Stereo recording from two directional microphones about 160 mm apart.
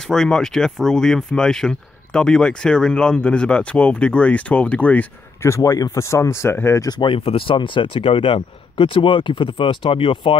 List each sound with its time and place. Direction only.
0.0 s speech: 5° left (ahead or behind); by 10.3 s 35° left (ahead or behind)